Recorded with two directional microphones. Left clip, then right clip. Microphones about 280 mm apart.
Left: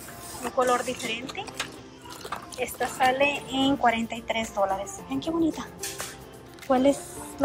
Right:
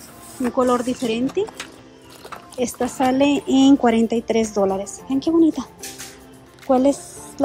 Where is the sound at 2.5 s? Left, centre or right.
Centre.